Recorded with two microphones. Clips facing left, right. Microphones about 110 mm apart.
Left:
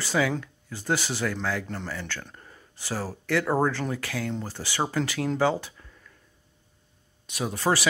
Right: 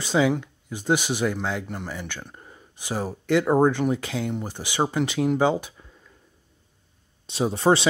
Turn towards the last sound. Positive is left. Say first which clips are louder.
# right 6 dB
turn(degrees=-25)  # may be behind; listen again after turning